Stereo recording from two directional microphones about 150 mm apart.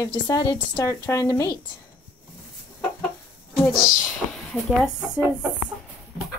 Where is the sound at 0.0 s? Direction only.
25° left (ahead or behind).